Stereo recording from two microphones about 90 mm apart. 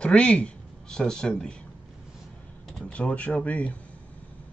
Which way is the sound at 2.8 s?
15° left (ahead or behind).